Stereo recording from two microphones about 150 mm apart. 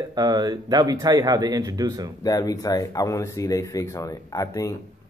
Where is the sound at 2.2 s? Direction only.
25° left (ahead or behind).